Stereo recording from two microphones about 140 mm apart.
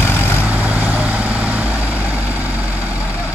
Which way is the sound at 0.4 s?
10° right (ahead or behind).